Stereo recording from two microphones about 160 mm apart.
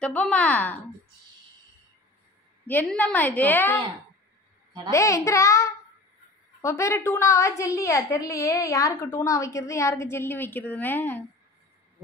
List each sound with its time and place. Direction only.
0.0 s a woman's voice: 5° left (ahead or behind)
2.6 s a woman's voice: 10° left (ahead or behind)
4.9 s a child's voice: 20° left (ahead or behind)